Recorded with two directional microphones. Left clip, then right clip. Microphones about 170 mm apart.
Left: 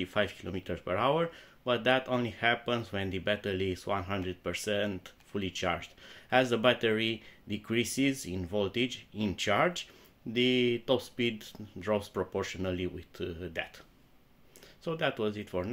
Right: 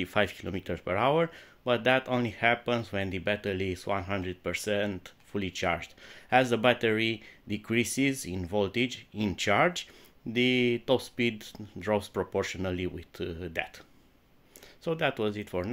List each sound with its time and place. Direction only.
0.0 s speech: 35° right (ahead or behind)
14.9 s speech: 30° right (ahead or behind)